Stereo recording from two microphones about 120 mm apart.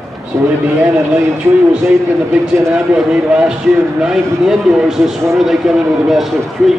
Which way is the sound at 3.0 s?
5° right (ahead or behind).